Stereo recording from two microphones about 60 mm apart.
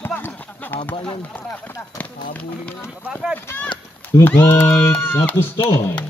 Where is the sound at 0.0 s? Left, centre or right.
Left.